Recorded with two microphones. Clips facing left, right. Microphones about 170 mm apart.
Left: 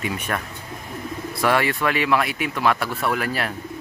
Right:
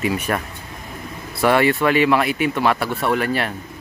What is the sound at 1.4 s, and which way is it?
Speech, centre (ahead or behind).